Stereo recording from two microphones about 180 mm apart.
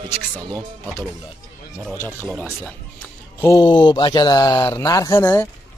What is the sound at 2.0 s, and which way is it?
Speech, 15° left (ahead or behind).